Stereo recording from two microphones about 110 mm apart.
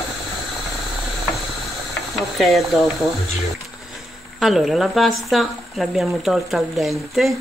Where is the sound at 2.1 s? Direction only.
Centre (ahead or behind).